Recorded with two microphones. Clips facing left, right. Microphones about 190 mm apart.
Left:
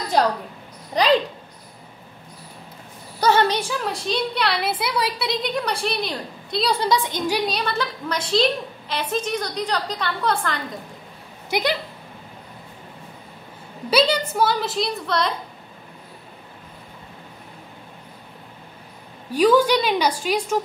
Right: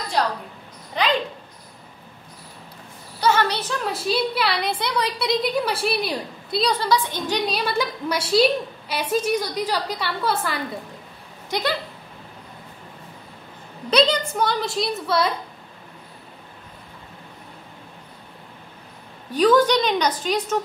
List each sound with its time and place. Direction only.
1.0 s a child's voice: 40° left (ahead or behind)
3.2 s a woman's voice: 35° left (ahead or behind)
3.4 s a woman's voice: 10° left (ahead or behind)
3.8 s a woman's voice: 5° right (ahead or behind)
6.8 s a woman's voice: 15° left (ahead or behind)
7.4 s a woman's voice: centre (ahead or behind)
13.8 s a woman's voice: 5° left (ahead or behind)
19.3 s a woman's voice: 10° left (ahead or behind)